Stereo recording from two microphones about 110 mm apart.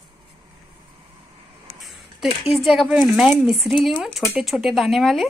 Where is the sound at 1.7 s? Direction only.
Centre (ahead or behind).